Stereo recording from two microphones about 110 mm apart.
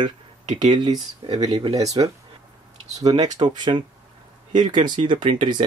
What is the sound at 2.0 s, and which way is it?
Speech, 50° right (ahead or behind).